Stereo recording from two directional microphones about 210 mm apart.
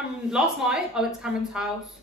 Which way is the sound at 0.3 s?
5° right (ahead or behind).